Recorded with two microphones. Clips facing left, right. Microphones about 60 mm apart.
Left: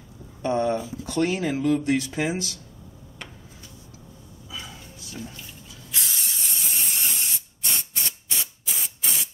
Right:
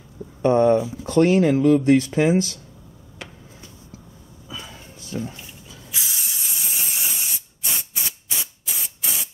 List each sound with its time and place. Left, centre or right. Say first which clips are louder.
0.4 s speech: right 7 dB; right
3.2 s a sound: right 3 dB; centre
5.9 s spray: even; centre